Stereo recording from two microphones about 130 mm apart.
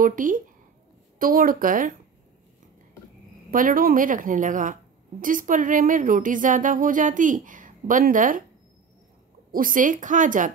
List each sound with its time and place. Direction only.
0.0 s speech: 90° right
3.4 s speech: 90° right
9.5 s speech: 90° right